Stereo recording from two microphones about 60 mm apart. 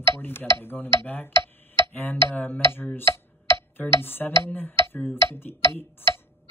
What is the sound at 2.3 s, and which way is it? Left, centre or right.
Speech, left.